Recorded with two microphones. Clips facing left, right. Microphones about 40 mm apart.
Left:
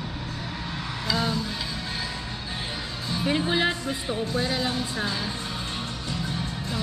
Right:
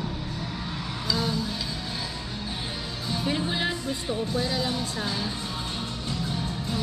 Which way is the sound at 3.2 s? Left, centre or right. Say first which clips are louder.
Left 4 dB; left.